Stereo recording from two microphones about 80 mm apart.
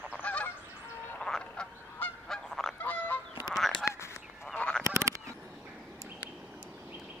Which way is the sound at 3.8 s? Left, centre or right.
Left.